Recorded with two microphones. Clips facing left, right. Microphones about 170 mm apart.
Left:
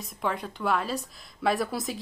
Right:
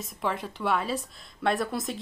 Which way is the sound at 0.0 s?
Centre (ahead or behind).